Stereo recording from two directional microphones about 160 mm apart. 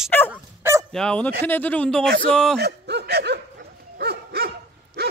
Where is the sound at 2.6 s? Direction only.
90° right.